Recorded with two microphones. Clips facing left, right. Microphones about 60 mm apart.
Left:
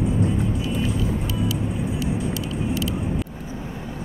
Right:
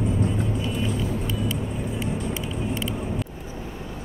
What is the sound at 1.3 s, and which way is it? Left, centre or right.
Vehicle, left.